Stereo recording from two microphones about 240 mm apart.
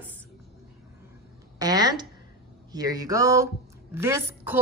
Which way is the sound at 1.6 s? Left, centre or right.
Centre.